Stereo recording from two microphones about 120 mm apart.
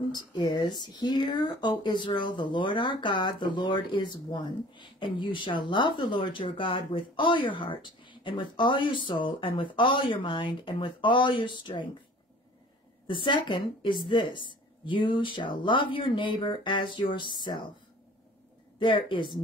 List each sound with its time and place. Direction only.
0.1 s speech: 35° left (ahead or behind)
13.0 s speech: 40° left (ahead or behind)
18.8 s speech: 40° left (ahead or behind)